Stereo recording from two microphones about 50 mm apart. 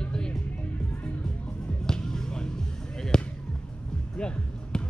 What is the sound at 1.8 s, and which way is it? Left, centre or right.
Basketball bounce, centre.